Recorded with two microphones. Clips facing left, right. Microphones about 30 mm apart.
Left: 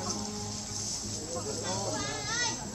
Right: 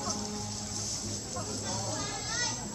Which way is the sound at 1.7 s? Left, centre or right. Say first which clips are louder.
Left 3 dB; centre.